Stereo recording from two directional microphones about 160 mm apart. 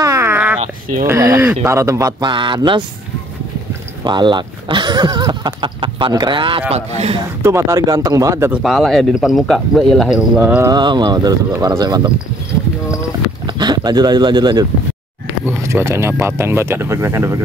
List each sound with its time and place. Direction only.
0.0 s a sound: 15° right (ahead or behind)
1.0 s speech: 20° right (ahead or behind)
4.0 s a man's voice: 30° right (ahead or behind)
7.4 s speech: 20° right (ahead or behind)
8.5 s speech: centre (ahead or behind)
10.7 s speech: 30° right (ahead or behind)
13.5 s speech: 25° right (ahead or behind)